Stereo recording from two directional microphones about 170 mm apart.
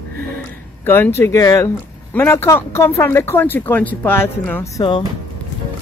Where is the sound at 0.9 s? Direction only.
15° left (ahead or behind).